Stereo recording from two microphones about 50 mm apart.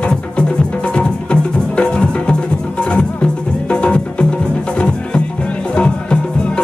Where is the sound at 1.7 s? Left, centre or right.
Left.